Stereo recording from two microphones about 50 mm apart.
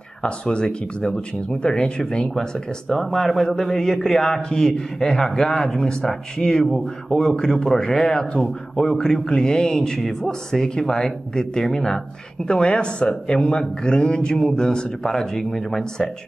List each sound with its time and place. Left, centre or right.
0.2 s speech: centre